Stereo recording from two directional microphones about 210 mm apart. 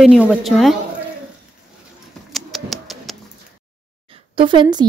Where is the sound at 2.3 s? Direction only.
Centre (ahead or behind).